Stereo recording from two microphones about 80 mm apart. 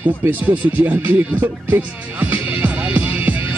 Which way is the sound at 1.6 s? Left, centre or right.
Right.